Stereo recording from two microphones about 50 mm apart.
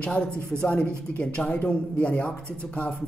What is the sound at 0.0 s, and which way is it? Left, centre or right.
Speech, left.